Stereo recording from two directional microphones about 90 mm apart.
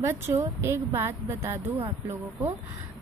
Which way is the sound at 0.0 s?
25° right (ahead or behind).